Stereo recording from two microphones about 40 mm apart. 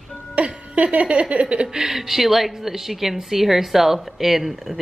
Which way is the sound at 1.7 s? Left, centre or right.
Centre.